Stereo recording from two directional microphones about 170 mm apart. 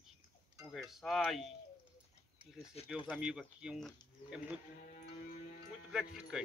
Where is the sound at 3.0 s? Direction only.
5° right (ahead or behind).